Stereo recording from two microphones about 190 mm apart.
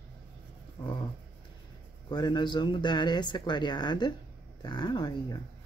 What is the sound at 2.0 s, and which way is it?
Speech, 20° left (ahead or behind).